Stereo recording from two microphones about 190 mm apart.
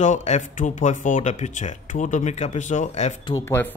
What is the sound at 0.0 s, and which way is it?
Speech, 40° left (ahead or behind).